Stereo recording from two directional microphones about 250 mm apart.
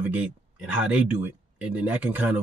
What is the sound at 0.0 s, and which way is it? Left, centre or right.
Speech, centre.